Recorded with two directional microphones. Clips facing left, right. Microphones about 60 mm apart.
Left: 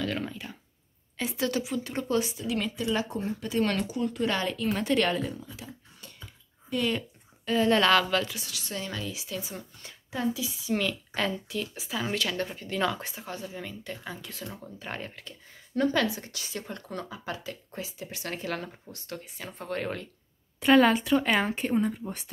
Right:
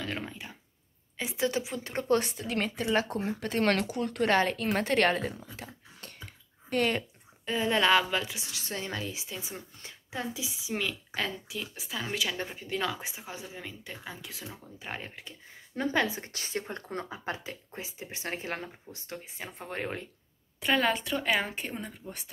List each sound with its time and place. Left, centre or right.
0.0 s speech: right
2.1 s a woman's voice: right
4.4 s speech: right
5.9 s a sound: right
7.4 s a woman's voice: centre
8.5 s a woman's voice: right
20.6 s speech: centre